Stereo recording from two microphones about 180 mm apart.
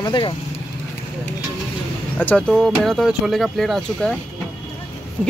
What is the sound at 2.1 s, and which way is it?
Speech, 10° left (ahead or behind).